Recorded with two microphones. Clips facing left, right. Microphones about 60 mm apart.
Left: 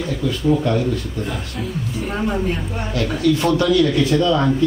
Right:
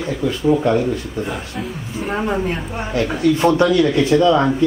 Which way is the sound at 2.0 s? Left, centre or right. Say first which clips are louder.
Right 2 dB; centre.